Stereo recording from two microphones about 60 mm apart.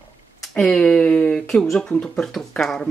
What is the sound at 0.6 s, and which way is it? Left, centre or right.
Speech, centre.